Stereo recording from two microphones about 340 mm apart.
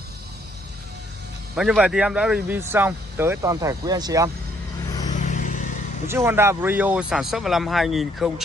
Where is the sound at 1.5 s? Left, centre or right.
Centre.